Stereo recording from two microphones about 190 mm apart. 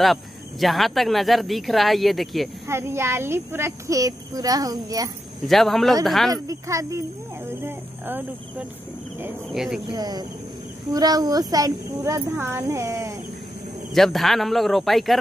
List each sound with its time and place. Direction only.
0.0 s speech: centre (ahead or behind)
2.7 s speech: 15° right (ahead or behind)
5.5 s speech: centre (ahead or behind)
6.3 s speech: 15° right (ahead or behind); by 9.8 s centre (ahead or behind)
9.9 s speech: 20° right (ahead or behind)
13.9 s speech: centre (ahead or behind)